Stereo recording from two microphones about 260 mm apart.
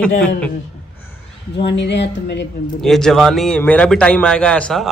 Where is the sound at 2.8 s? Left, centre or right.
Centre.